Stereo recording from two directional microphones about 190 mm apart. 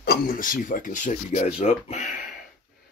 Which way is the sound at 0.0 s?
50° left (ahead or behind).